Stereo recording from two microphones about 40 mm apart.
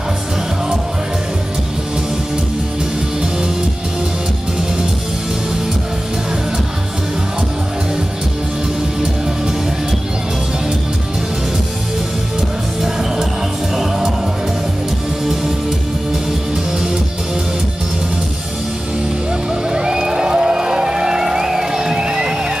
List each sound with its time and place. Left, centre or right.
19.7 s music: centre